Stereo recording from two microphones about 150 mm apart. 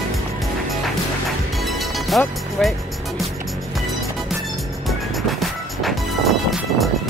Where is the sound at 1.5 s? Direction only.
Centre (ahead or behind).